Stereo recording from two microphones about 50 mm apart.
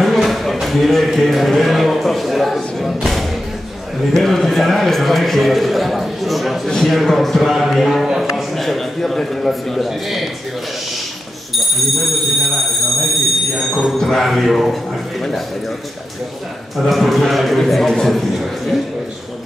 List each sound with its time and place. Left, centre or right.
0.0 s a man's voice: centre
11.5 s a man's voice: centre
16.7 s a man's voice: centre